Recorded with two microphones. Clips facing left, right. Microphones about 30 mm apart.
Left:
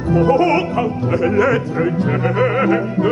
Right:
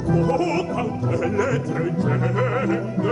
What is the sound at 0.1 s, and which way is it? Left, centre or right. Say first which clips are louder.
Music: left 7 dB; left.